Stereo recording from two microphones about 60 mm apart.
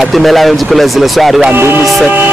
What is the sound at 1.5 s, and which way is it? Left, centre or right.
Music, right.